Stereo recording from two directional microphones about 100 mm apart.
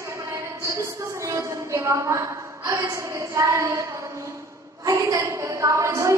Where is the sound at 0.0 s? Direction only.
30° right (ahead or behind).